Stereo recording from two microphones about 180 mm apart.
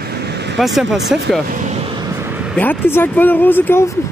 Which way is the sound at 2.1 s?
10° right (ahead or behind).